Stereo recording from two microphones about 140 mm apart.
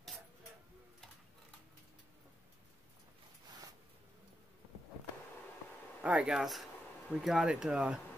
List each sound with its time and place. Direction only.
6.0 s speech: 5° right (ahead or behind)